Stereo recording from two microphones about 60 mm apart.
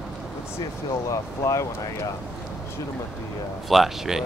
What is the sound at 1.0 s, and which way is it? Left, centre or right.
Speech, left.